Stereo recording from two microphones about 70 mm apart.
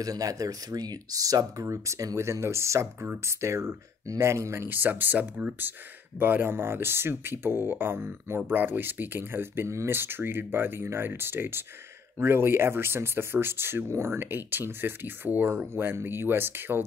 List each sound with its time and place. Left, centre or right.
0.0 s speech: right
4.6 s speech: right